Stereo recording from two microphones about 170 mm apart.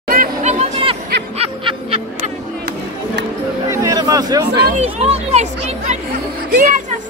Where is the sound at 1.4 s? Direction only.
30° right (ahead or behind).